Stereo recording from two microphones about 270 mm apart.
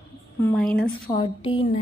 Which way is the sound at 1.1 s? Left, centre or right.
Centre.